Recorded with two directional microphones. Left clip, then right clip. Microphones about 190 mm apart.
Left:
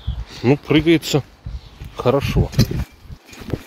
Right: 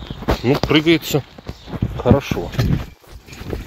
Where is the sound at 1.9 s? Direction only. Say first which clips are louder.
Even; 20° left (ahead or behind).